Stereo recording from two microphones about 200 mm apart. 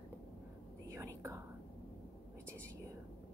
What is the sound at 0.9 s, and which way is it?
Whispering, 15° right (ahead or behind).